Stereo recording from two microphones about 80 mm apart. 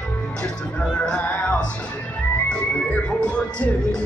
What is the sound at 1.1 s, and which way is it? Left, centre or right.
Music, centre.